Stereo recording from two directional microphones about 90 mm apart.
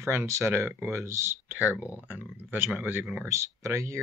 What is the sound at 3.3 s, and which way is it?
Speech, 35° right (ahead or behind).